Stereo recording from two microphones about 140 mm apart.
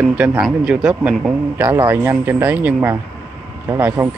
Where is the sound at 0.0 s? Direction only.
10° right (ahead or behind).